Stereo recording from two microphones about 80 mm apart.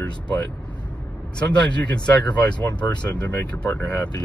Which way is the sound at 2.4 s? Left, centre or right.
Centre.